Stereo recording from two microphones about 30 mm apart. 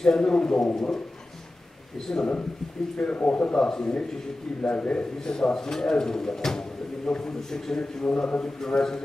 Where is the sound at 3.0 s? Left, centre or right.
Left.